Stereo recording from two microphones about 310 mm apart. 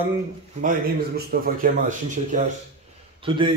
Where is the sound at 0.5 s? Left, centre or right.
Right.